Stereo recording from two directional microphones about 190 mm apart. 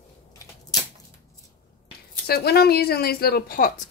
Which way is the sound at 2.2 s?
55° left (ahead or behind).